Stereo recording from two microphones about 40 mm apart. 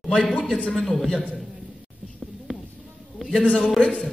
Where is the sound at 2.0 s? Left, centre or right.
Centre.